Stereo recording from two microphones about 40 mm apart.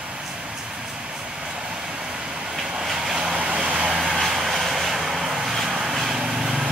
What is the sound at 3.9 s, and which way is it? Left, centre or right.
Vehicle, centre.